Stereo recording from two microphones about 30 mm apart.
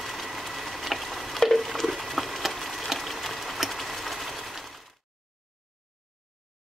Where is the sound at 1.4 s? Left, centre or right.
Centre.